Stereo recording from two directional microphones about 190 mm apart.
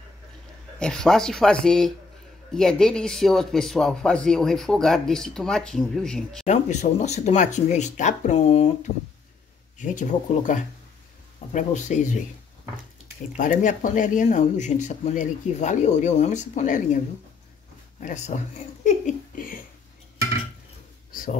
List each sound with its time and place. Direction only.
0.7 s speech: 5° left (ahead or behind)
6.4 s speech: 40° left (ahead or behind)
9.8 s speech: 40° left (ahead or behind)
13.4 s speech: 45° left (ahead or behind)
18.0 s speech: 40° left (ahead or behind)
18.9 s a sound: 40° left (ahead or behind)
21.1 s a sound: 45° left (ahead or behind)